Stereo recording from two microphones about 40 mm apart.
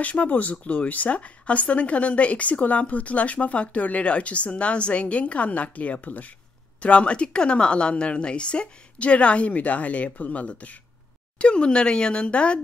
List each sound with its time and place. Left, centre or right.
0.0 s speech: left
11.3 s speech: left